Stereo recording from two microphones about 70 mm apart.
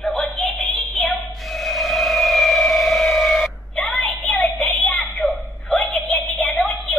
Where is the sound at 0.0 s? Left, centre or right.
Centre.